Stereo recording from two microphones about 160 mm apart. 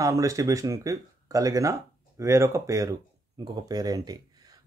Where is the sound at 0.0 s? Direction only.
20° right (ahead or behind).